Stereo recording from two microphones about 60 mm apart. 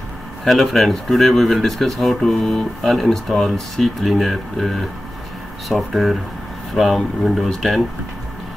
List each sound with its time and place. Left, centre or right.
0.5 s speech: centre